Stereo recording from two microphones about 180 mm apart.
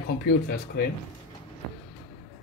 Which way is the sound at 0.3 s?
65° left (ahead or behind).